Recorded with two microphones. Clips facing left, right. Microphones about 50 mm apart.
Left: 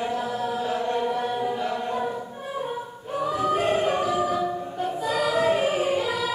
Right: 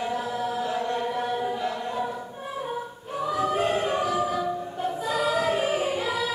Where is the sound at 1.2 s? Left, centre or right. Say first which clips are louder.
Left 1 dB; centre.